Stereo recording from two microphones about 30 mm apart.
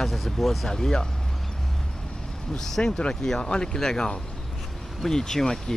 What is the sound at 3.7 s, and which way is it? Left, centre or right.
Speech, centre.